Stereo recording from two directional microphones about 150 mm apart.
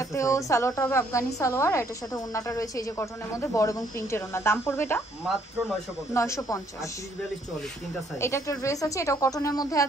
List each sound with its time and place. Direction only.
0.0 s a woman's voice: 20° left (ahead or behind)
6.1 s a woman's voice: 20° left (ahead or behind)
8.2 s a woman's voice: 20° left (ahead or behind)